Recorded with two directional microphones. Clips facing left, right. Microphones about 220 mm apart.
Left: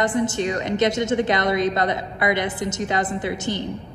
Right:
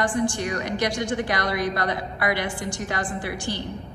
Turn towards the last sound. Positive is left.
turn(degrees=20)  # may be behind; listen again after turning